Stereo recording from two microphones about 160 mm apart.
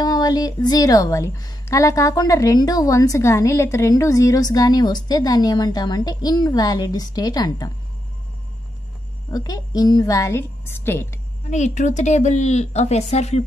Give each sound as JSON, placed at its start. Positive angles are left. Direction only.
{"t": 0.0, "sound": "a woman's voice", "side_deg": 25}
{"t": 9.3, "sound": "a woman's voice", "side_deg": 25}
{"t": 11.5, "sound": "speech", "side_deg": 45}